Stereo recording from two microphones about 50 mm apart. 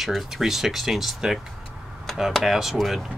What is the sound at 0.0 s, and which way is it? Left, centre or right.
Speech, centre.